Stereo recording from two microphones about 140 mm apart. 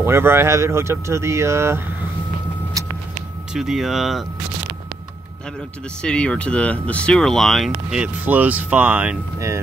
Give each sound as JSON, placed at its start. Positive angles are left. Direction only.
{"t": 0.0, "sound": "speech", "side_deg": -15}
{"t": 3.5, "sound": "speech", "side_deg": 0}
{"t": 6.0, "sound": "speech", "side_deg": 10}